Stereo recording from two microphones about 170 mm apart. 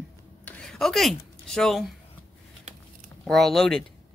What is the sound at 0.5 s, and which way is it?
Speech, 5° left (ahead or behind).